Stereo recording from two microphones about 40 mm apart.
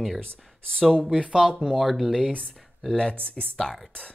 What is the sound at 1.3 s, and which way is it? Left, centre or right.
Speech, centre.